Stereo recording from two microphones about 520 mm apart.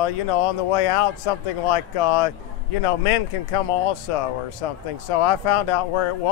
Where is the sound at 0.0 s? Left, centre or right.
Left.